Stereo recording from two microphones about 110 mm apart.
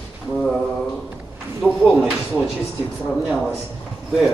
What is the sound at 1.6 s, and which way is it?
Speech, centre (ahead or behind).